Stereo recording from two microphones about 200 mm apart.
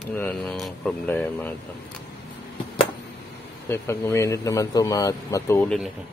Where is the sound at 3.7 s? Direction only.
10° left (ahead or behind).